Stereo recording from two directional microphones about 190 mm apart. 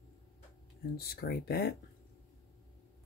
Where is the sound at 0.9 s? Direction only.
55° left (ahead or behind).